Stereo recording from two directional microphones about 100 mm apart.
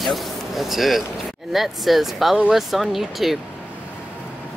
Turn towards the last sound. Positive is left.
turn(degrees=0)  # may be behind; listen again after turning